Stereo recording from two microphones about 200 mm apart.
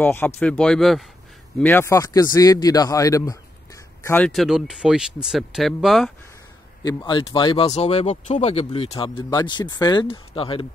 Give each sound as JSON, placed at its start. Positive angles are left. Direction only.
{"t": 0.0, "sound": "speech", "side_deg": 10}
{"t": 6.8, "sound": "speech", "side_deg": 20}